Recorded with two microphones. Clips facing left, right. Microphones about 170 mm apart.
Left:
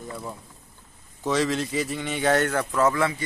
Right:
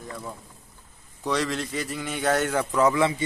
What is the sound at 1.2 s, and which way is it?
Speech, centre (ahead or behind).